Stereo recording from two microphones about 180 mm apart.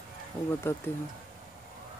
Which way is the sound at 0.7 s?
10° left (ahead or behind).